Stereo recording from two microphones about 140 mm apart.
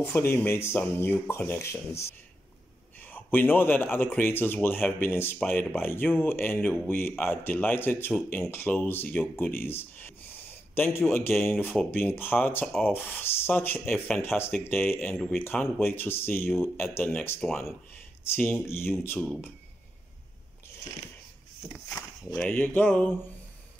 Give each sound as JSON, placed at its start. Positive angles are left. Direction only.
{"t": 0.1, "sound": "speech", "side_deg": 15}
{"t": 14.2, "sound": "speech", "side_deg": 15}
{"t": 15.0, "sound": "speech", "side_deg": 5}
{"t": 22.3, "sound": "speech", "side_deg": 5}